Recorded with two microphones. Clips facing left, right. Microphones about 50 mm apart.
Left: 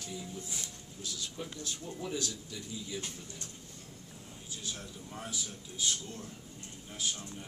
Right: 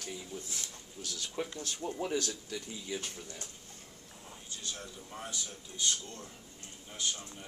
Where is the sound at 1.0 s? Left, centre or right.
Right.